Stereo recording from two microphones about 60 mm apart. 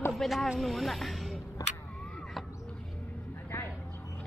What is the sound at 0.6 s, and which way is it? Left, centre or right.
Speech, centre.